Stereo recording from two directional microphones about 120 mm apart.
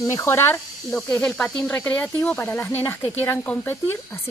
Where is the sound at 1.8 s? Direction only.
15° left (ahead or behind).